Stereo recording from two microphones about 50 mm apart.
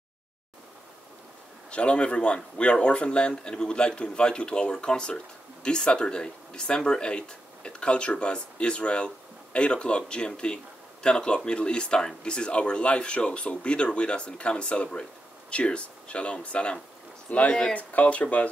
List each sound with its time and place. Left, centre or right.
1.7 s speech: left